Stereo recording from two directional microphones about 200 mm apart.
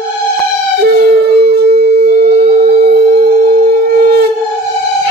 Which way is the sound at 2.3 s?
55° right (ahead or behind).